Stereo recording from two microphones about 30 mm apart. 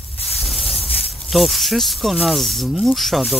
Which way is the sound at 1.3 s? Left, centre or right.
Centre.